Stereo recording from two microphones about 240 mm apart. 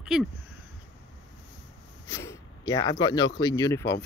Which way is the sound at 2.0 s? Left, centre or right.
Centre.